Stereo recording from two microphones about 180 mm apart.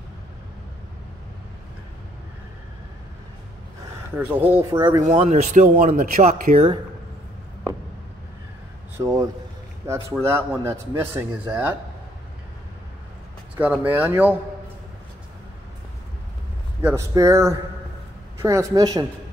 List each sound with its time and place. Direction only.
4.1 s speech: 10° right (ahead or behind)
5.0 s speech: 35° right (ahead or behind)
8.9 s speech: 15° right (ahead or behind)
13.6 s speech: 10° right (ahead or behind)
16.8 s speech: 15° right (ahead or behind)